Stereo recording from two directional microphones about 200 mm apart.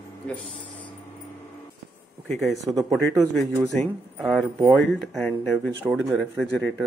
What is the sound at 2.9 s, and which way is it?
A man's voice, centre (ahead or behind).